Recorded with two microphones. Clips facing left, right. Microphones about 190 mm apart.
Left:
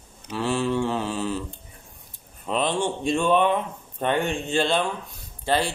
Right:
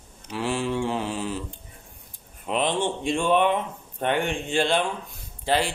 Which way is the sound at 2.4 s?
15° right (ahead or behind).